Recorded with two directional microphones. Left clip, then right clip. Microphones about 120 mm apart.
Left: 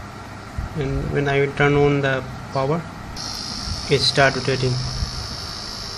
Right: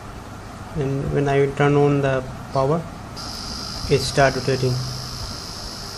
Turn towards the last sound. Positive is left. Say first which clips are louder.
# even
turn(degrees=5)  # may be behind; listen again after turning